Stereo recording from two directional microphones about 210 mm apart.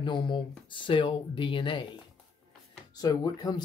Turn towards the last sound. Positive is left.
turn(degrees=20)  # may be behind; listen again after turning